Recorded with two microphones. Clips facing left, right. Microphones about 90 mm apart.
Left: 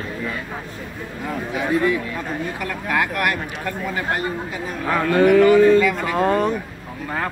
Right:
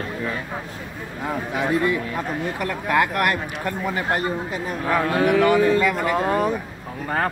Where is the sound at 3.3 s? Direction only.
30° right (ahead or behind).